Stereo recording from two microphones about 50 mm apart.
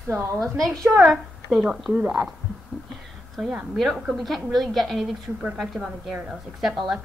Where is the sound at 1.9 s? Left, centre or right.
Right.